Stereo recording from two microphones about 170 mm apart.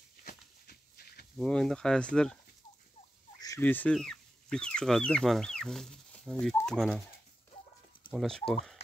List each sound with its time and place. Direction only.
0.2 s a sound: 60° left (ahead or behind)
1.4 s speech: 5° left (ahead or behind)
3.3 s speech: 20° left (ahead or behind)
8.1 s speech: centre (ahead or behind)